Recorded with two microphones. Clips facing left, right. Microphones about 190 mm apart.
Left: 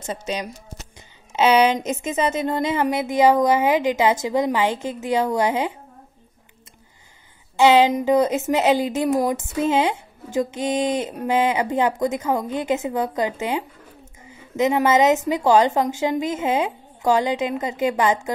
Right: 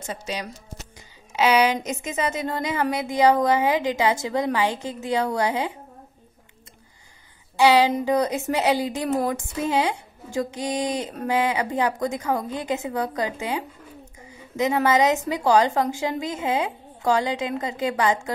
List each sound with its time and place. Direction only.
0.0 s speech: 20° left (ahead or behind)
7.5 s speech: 20° left (ahead or behind)